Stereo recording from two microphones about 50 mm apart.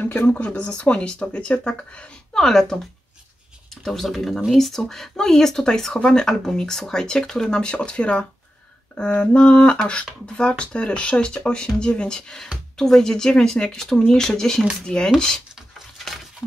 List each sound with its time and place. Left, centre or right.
0.0 s speech: left
0.3 s speech: left
2.3 s speech: centre
3.8 s speech: centre